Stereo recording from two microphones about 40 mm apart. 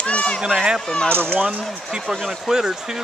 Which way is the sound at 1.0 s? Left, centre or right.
Right.